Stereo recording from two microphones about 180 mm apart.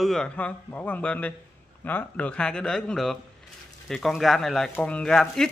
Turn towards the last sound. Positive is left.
turn(degrees=0)  # may be behind; listen again after turning